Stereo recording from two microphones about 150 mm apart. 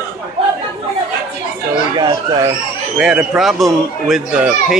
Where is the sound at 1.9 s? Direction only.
30° right (ahead or behind).